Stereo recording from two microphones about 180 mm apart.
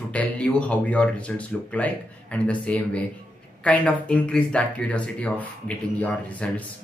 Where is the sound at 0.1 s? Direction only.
5° left (ahead or behind).